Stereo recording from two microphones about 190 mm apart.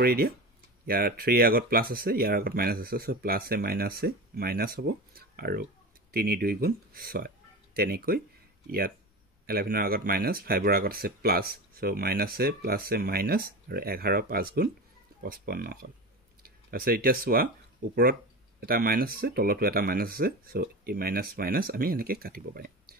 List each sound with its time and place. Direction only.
0.0 s speech: 55° right (ahead or behind)
18.6 s speech: 50° right (ahead or behind)